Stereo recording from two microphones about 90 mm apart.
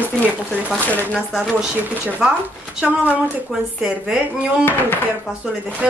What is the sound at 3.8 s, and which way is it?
Speech, 10° right (ahead or behind).